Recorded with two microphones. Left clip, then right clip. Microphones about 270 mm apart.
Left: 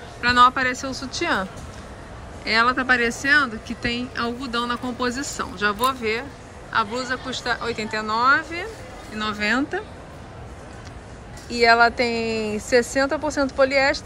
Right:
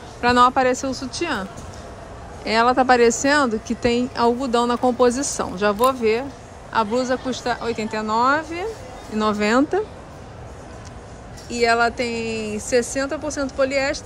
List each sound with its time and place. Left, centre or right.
0.2 s speech: centre
11.4 s speech: centre